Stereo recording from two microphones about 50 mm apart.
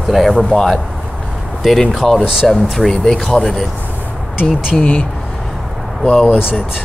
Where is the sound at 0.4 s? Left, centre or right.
Centre.